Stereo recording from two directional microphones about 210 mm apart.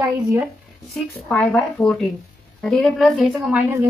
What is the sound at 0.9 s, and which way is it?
A woman's voice, 5° left (ahead or behind).